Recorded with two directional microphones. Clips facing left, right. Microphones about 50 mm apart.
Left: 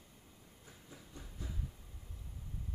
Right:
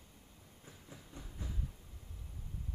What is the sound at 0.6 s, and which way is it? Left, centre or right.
Train, right.